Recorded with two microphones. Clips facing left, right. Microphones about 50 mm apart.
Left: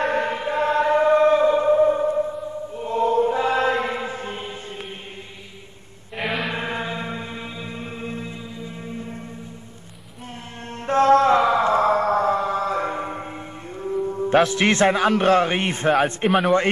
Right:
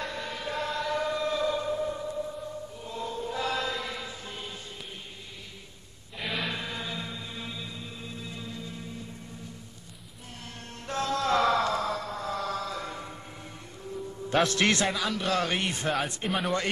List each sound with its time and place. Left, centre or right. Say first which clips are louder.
0.0 s choir: left 13 dB; left
0.4 s choir: left 8 dB; left
3.3 s mantra: left 10 dB; left
6.2 s chant: left 7 dB; centre
6.5 s music: left 8 dB; left
8.3 s music: left 5 dB; left
10.9 s chant: left 13 dB; left
11.3 s music: left 7 dB; left
11.7 s music: left 13 dB; left
12.4 s music: left 10 dB; left
14.7 s a man's voice: left 10 dB; left
16.3 s speech: left 11 dB; centre